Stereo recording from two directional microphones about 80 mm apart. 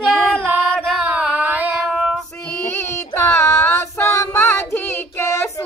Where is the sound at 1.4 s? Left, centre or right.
Right.